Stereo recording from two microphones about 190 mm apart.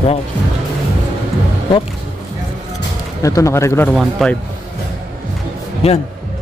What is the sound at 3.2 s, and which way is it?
Speech, 15° left (ahead or behind).